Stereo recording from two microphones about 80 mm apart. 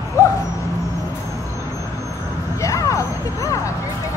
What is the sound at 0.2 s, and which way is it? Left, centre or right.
Dog, left.